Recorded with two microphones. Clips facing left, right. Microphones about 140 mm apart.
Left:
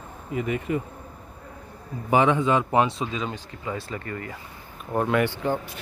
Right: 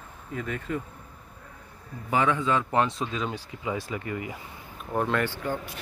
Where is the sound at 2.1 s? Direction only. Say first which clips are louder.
Left 4 dB; 20° left (ahead or behind).